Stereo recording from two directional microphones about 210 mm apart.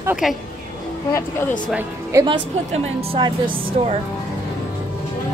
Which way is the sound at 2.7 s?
25° right (ahead or behind).